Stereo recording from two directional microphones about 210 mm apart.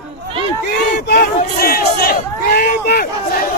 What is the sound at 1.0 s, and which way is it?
Crowd, 50° left (ahead or behind).